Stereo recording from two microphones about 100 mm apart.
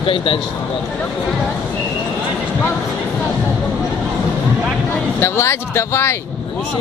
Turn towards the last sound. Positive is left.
turn(degrees=25)  # may be behind; listen again after turning